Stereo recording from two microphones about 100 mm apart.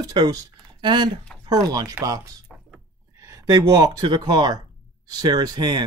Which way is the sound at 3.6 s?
45° right (ahead or behind).